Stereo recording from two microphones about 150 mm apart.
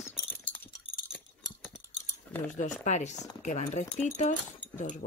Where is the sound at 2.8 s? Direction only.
50° left (ahead or behind).